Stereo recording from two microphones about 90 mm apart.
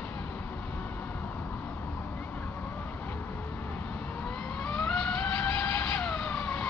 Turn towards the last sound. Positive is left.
turn(degrees=10)  # may be behind; listen again after turning